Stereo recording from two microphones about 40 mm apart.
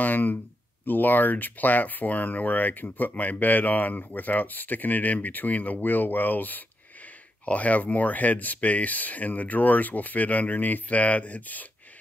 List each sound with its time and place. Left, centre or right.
0.0 s speech: left
7.4 s speech: left